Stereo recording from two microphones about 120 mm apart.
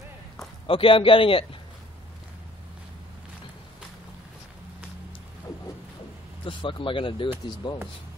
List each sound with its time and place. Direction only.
0.7 s a man's voice: 50° left (ahead or behind)
6.4 s speech: 45° left (ahead or behind)